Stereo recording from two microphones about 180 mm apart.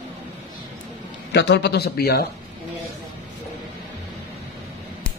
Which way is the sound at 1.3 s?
70° left (ahead or behind).